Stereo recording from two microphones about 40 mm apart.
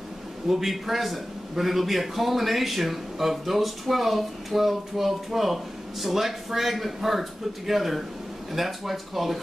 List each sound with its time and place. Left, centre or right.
0.5 s a man's voice: centre